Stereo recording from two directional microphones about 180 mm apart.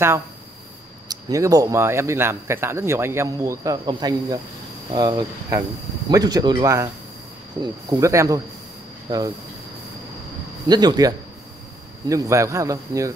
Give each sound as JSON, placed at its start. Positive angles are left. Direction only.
{"t": 1.0, "sound": "speech", "side_deg": -20}
{"t": 10.7, "sound": "speech", "side_deg": -25}